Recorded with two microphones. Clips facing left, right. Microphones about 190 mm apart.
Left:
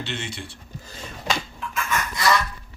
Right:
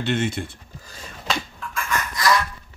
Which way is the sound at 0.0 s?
50° right (ahead or behind).